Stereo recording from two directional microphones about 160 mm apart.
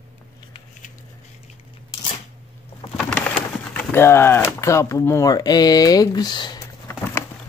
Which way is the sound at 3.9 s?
15° left (ahead or behind).